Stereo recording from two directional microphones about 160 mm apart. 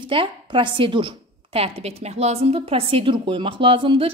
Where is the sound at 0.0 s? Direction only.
30° right (ahead or behind).